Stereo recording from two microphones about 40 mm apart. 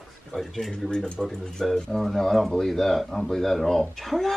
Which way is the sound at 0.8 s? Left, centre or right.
Centre.